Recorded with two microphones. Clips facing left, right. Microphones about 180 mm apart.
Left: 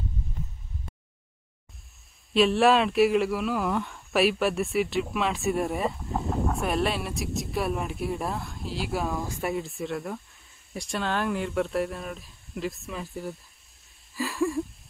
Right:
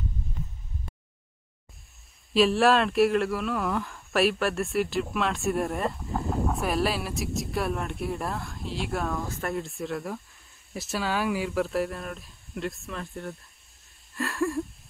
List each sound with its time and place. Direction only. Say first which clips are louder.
2.3 s speech: left 1 dB; centre (ahead or behind)